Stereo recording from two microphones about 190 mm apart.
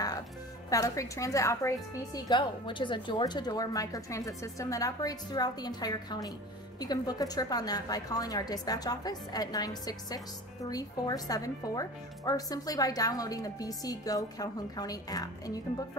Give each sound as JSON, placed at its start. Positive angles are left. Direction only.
{"t": 0.7, "sound": "a woman's voice", "side_deg": 15}